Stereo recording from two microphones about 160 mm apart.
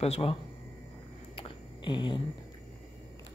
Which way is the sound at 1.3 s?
30° left (ahead or behind).